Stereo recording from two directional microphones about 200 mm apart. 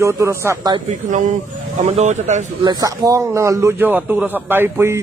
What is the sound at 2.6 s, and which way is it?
A man's voice, 20° right (ahead or behind).